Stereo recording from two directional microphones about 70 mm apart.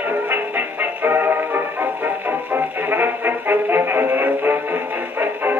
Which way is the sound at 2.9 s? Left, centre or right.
Right.